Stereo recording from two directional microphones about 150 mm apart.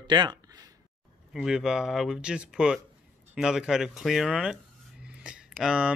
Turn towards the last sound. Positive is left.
turn(degrees=-5)  # may be behind; listen again after turning